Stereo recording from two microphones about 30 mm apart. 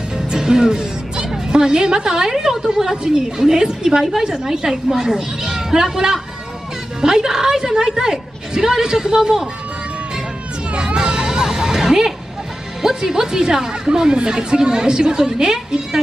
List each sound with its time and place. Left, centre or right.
0.3 s music: right
2.0 s a woman's voice: centre
10.7 s a sound: right
12.8 s speech: centre